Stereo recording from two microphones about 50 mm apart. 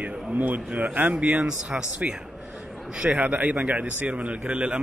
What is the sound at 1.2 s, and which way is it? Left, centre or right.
Speech, right.